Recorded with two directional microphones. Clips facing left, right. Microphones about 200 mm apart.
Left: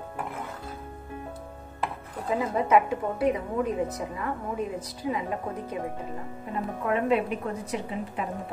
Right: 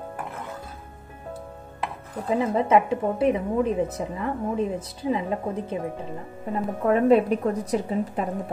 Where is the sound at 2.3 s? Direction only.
25° right (ahead or behind).